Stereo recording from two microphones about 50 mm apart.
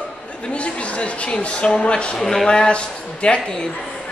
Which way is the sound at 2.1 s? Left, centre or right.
Centre.